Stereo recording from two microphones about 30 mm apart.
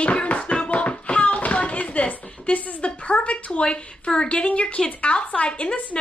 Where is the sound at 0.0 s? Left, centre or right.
Left.